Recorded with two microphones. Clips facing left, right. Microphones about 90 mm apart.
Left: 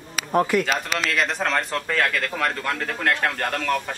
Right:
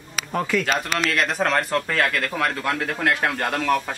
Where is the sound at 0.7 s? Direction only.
Centre (ahead or behind).